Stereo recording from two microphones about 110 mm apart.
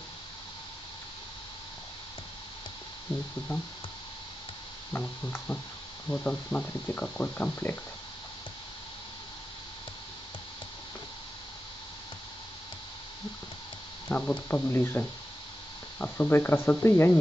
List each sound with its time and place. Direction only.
5.0 s speech: 15° left (ahead or behind)
14.0 s speech: 15° left (ahead or behind)